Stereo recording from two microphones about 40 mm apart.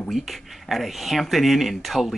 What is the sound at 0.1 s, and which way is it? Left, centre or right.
A woman's voice, centre.